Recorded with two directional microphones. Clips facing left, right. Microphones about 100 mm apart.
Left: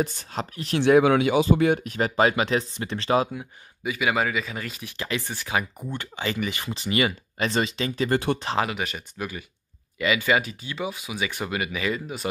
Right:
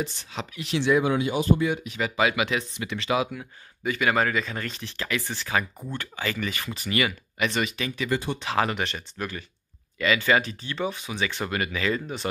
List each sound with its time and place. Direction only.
0.0 s speech: 45° left (ahead or behind); by 1.7 s 85° left
1.7 s speech: 50° left (ahead or behind)
3.3 s speech: 10° left (ahead or behind)
4.9 s speech: 20° left (ahead or behind)
8.6 s speech: 5° left (ahead or behind)